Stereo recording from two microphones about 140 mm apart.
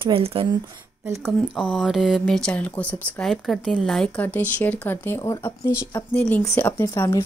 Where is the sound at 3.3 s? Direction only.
Centre (ahead or behind).